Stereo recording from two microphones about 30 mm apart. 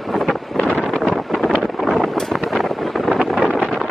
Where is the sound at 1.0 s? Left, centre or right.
Centre.